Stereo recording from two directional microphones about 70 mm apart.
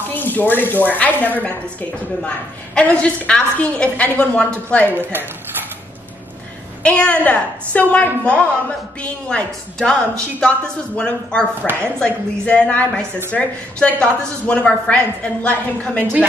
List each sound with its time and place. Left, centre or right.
0.1 s a woman's voice: left
4.9 s a woman's voice: right
6.8 s a woman's voice: centre